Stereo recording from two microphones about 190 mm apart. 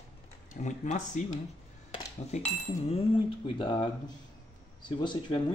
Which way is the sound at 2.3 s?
35° left (ahead or behind).